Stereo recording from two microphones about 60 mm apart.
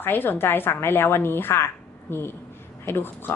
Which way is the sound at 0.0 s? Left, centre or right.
Left.